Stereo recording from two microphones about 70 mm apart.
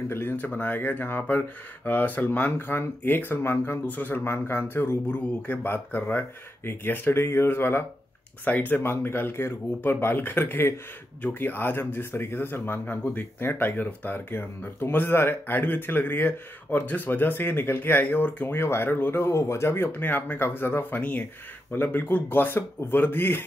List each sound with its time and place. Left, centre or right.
0.1 s speech: left
21.0 s speech: left